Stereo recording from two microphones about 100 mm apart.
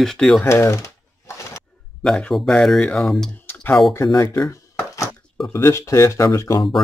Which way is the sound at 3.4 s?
20° left (ahead or behind).